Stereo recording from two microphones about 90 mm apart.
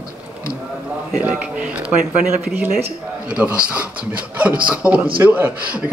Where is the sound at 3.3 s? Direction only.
15° right (ahead or behind).